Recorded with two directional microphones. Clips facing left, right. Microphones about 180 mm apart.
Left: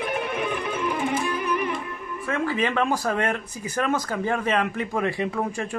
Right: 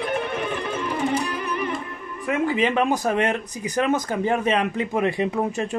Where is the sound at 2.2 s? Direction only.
20° right (ahead or behind).